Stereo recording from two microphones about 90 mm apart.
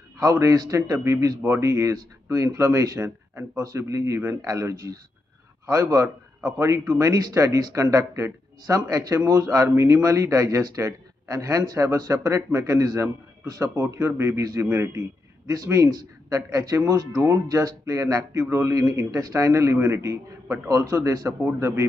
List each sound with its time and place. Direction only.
0.2 s a man's voice: 35° right (ahead or behind)
19.3 s a man's voice: 30° right (ahead or behind)